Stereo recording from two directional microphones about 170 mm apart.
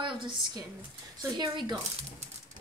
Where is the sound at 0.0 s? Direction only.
30° right (ahead or behind).